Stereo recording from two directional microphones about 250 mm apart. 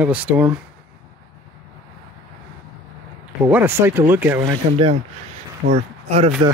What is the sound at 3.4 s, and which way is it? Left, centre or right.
Speech, centre.